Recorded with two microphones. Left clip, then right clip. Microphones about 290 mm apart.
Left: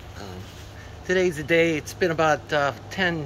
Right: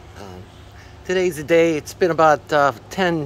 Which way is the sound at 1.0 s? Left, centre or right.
Centre.